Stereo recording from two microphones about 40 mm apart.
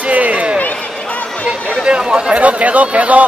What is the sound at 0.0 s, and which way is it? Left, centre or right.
Basketball bounce, right.